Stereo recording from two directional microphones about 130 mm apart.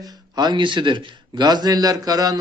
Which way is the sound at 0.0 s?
35° right (ahead or behind).